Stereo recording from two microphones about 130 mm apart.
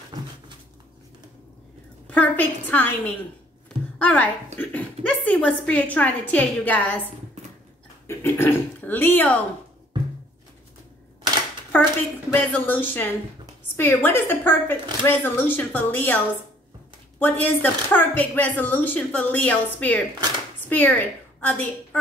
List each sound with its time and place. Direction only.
0.1 s a sound: 30° right (ahead or behind)
2.0 s a woman's voice: 10° left (ahead or behind)
4.0 s a woman's voice: 10° left (ahead or behind)
8.1 s speech: 20° left (ahead or behind)
11.7 s speech: 10° left (ahead or behind)
17.2 s a woman's voice: 15° left (ahead or behind)